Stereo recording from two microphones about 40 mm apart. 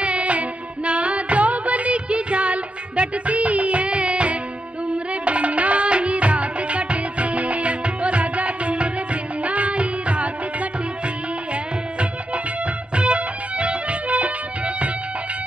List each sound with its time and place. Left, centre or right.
0.0 s music: right
12.9 s music: right